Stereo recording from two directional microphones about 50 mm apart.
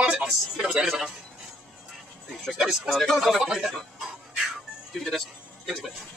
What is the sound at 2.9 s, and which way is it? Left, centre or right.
Speech, centre.